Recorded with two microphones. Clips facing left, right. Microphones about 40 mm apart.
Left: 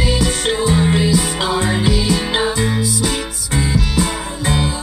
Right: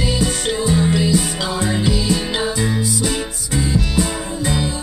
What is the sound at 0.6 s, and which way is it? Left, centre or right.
Music, left.